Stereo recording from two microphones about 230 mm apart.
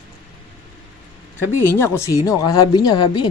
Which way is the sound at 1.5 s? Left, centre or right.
Centre.